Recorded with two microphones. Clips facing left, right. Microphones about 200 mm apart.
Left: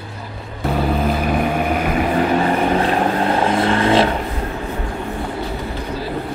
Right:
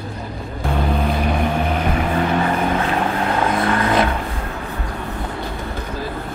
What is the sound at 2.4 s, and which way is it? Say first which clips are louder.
Vehicle: left 3 dB; 30° left (ahead or behind).